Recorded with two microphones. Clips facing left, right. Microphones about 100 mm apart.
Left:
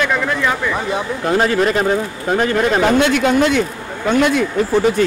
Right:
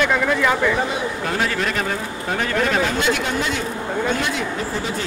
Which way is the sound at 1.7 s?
25° left (ahead or behind).